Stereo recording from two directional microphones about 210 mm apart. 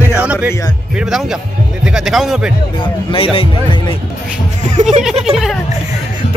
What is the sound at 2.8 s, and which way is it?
Speech, 25° left (ahead or behind).